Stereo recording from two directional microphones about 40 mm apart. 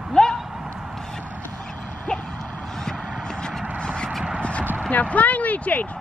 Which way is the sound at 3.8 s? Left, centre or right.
Left.